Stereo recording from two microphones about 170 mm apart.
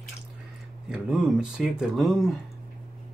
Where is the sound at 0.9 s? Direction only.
5° right (ahead or behind).